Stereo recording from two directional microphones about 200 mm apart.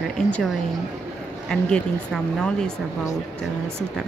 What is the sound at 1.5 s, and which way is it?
Speech, centre (ahead or behind).